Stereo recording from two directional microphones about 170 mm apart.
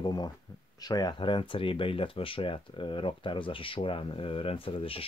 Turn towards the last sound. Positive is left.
turn(degrees=30)  # may be behind; listen again after turning